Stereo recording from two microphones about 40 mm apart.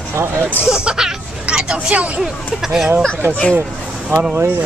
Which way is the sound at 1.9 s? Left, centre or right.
Right.